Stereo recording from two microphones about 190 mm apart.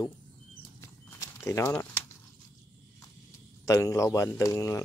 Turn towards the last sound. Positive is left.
turn(degrees=15)  # may be behind; listen again after turning